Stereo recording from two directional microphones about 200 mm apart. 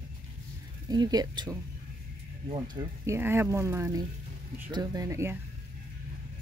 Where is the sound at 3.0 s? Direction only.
15° right (ahead or behind).